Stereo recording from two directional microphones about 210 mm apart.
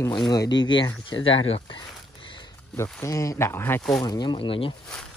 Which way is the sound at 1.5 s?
25° left (ahead or behind).